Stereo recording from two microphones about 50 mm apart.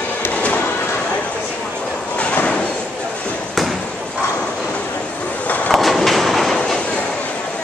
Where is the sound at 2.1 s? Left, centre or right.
Left.